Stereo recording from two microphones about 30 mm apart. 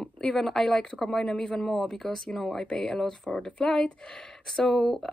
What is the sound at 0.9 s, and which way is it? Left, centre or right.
Speech, centre.